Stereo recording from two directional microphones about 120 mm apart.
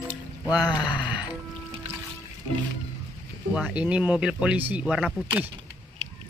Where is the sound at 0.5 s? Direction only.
35° left (ahead or behind).